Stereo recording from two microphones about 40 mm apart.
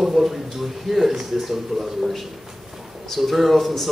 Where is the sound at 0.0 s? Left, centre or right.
Centre.